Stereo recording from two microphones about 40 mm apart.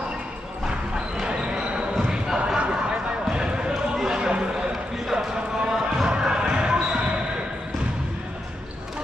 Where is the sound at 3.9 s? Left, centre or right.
Centre.